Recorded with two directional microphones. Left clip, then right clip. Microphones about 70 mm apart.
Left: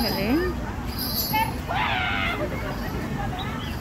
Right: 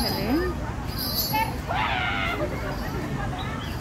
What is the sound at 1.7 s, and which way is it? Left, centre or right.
Screaming, centre.